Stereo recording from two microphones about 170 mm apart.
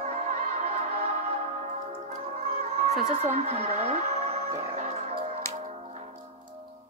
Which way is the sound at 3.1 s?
40° right (ahead or behind).